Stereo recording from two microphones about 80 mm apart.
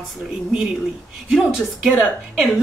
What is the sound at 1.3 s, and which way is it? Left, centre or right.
A woman's voice, centre.